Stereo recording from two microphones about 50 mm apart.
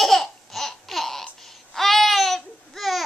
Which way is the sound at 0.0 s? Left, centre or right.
Centre.